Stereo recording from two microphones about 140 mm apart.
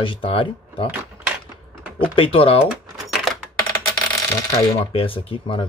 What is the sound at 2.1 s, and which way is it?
Speech, 40° left (ahead or behind).